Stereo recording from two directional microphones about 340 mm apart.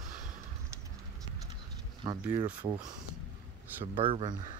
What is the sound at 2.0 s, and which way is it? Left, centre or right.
Speech, centre.